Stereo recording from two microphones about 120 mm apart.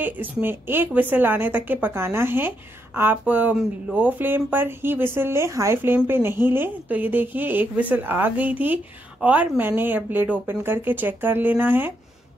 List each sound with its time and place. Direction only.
0.0 s a woman's voice: 15° right (ahead or behind)